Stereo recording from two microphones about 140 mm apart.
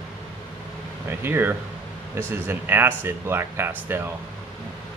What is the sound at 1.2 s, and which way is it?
Speech, 15° right (ahead or behind).